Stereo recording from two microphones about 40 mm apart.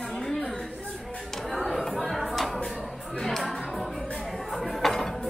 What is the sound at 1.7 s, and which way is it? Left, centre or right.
Chatter, centre.